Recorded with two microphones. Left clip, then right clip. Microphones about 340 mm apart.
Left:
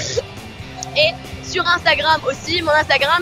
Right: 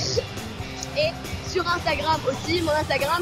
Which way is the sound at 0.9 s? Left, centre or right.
Left.